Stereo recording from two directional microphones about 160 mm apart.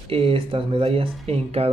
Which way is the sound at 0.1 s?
35° right (ahead or behind).